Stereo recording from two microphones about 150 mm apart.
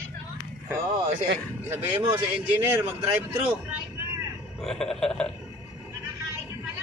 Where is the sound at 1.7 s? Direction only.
15° right (ahead or behind).